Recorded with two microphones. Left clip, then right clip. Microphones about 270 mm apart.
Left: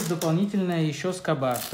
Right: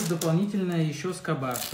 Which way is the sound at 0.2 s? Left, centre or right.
Centre.